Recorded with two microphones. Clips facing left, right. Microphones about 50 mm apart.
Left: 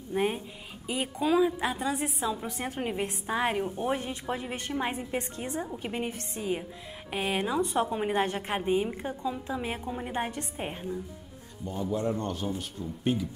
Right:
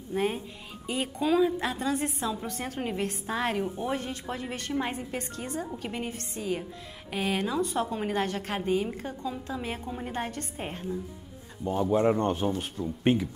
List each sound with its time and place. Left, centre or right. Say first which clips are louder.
0.1 s a woman's voice: even; centre
2.4 s a woman's voice: even; centre
11.6 s speech: right 6 dB; right